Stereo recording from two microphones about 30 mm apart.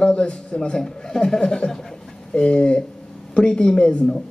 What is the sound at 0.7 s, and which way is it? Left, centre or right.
A man's voice, centre.